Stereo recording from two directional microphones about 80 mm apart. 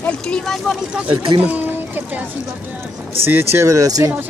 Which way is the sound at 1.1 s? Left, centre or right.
Right.